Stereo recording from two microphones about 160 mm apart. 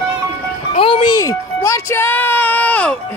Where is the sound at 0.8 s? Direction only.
35° left (ahead or behind).